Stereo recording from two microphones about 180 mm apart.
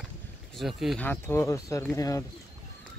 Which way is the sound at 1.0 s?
15° left (ahead or behind).